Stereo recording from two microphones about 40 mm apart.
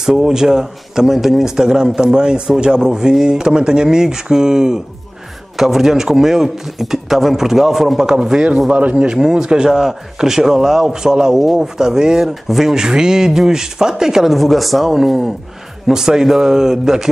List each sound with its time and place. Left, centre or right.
0.0 s a man's voice: centre
8.0 s a man's voice: centre
12.7 s a man's voice: centre
14.3 s speech: centre
14.9 s a man's voice: centre